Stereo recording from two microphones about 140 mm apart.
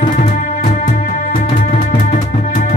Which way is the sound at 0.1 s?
60° left (ahead or behind).